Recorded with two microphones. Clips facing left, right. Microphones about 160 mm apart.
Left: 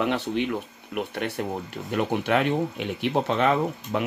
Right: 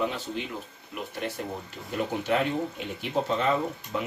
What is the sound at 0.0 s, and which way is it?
Speech, 70° left (ahead or behind).